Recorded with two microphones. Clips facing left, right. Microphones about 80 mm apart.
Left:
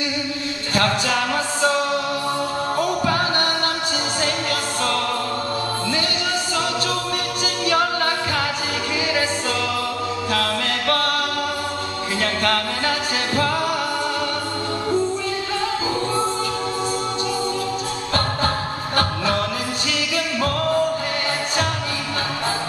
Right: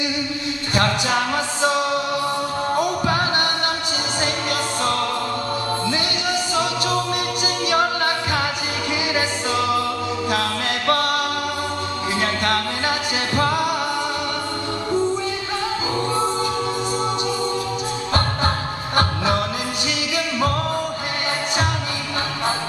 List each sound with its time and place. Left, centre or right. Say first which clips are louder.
0.7 s music: even; right
2.8 s music: left 1 dB; centre
7.6 s a capella: even; right
10.3 s music: left 2 dB; right
12.2 s music: left 1 dB; right